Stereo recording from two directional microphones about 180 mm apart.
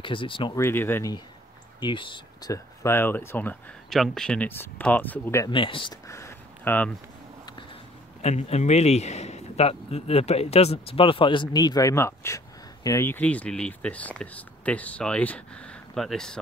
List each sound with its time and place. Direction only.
0.0 s speech: 30° left (ahead or behind)
0.6 s speech: 15° left (ahead or behind)
1.8 s speech: 25° left (ahead or behind)
5.5 s speech: 30° left (ahead or behind)
6.0 s a sound: 15° left (ahead or behind)
8.2 s speech: 35° left (ahead or behind); by 16.3 s 5° left (ahead or behind)